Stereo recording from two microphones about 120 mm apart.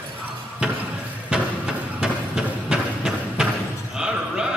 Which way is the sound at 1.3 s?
5° right (ahead or behind).